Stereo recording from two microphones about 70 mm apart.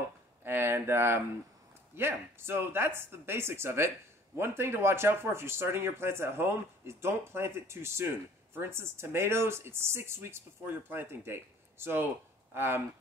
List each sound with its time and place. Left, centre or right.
0.4 s speech: right